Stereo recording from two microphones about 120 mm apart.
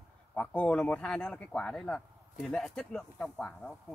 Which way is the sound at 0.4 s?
10° left (ahead or behind).